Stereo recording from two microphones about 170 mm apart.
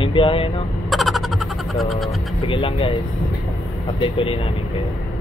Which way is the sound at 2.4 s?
30° left (ahead or behind).